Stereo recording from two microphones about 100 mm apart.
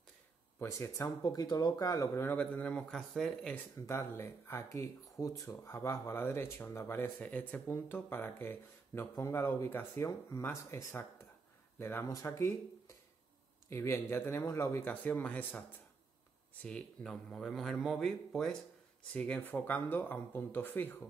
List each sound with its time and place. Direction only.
0.6 s speech: 25° left (ahead or behind)
2.3 s a man's voice: 10° left (ahead or behind)
3.7 s speech: 25° left (ahead or behind)
16.6 s speech: 10° left (ahead or behind)